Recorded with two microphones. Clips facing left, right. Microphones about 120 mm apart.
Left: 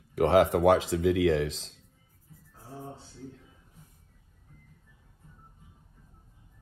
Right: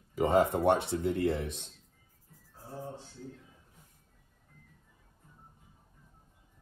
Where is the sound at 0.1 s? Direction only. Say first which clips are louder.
Left 4 dB; 80° left.